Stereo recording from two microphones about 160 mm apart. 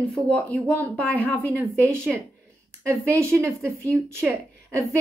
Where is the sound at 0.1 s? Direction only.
5° left (ahead or behind).